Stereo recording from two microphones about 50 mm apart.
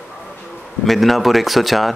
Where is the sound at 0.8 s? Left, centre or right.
Centre.